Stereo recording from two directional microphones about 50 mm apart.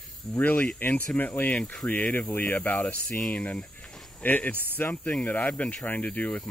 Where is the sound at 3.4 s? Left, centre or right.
Left.